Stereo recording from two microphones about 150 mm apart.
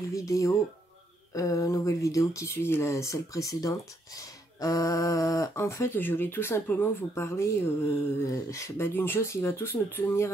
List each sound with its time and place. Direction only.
0.1 s speech: 20° left (ahead or behind)